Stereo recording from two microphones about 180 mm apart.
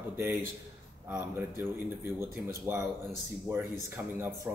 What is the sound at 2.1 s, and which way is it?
Speech, 10° right (ahead or behind).